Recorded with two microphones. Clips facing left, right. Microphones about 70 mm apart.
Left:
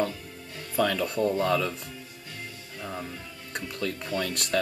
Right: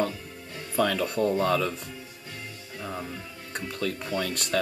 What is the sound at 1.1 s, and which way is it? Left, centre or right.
Speech, right.